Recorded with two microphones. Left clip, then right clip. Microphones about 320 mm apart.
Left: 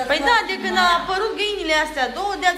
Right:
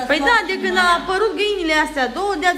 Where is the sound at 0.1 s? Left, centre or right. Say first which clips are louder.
Right 2 dB; centre.